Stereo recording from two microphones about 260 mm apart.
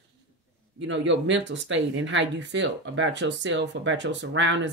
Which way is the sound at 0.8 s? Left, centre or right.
Right.